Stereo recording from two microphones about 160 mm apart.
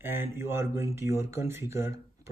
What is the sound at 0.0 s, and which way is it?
Speech, 15° right (ahead or behind).